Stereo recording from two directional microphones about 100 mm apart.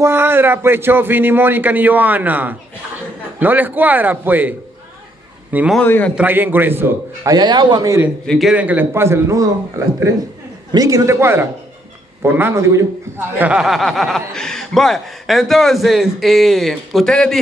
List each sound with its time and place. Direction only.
0.0 s a man's voice: 25° right (ahead or behind)
5.9 s a man's voice: 20° left (ahead or behind)
6.1 s a man's voice: 20° right (ahead or behind)
7.2 s a man's voice: 45° right (ahead or behind)
7.8 s a man's voice: 30° right (ahead or behind)
8.3 s speech: centre (ahead or behind)
8.5 s a man's voice: 15° right (ahead or behind)
10.7 s a man's voice: 35° right (ahead or behind)
13.4 s speech: 10° right (ahead or behind)